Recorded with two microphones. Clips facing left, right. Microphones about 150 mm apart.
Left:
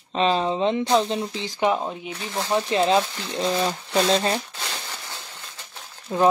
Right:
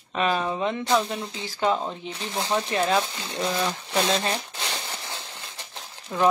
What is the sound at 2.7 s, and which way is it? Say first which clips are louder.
Speech: left 5 dB; 25° left (ahead or behind).